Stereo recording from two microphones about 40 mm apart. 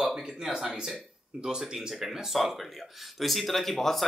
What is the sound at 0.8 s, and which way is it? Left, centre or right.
Speech, centre.